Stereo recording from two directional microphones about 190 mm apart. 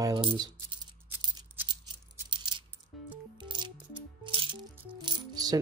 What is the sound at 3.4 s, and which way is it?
Music, 25° right (ahead or behind).